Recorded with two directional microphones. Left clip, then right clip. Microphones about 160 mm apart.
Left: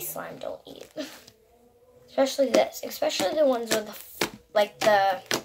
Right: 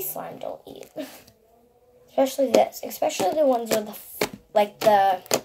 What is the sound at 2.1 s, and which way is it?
Speech, 15° right (ahead or behind).